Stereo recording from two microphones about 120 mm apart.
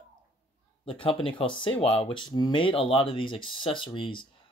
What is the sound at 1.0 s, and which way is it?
Speech, 45° left (ahead or behind).